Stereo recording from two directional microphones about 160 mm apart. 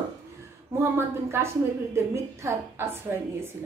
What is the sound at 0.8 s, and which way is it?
A woman's voice, 15° right (ahead or behind).